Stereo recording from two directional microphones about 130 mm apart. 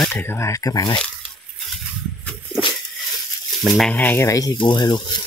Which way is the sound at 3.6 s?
Centre (ahead or behind).